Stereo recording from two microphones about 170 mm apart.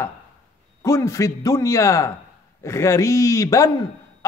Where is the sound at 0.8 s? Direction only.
20° left (ahead or behind).